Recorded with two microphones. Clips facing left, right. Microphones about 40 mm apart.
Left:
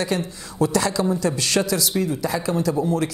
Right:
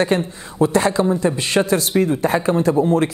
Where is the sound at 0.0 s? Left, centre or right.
Right.